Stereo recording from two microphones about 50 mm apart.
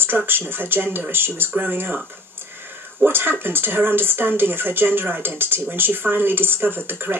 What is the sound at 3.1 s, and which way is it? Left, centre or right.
Speech, right.